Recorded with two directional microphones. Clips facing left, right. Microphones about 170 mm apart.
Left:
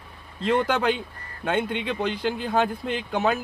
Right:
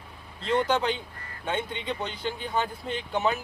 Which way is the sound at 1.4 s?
75° left (ahead or behind).